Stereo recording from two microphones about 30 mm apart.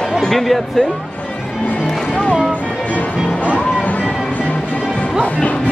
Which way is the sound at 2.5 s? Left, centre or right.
Left.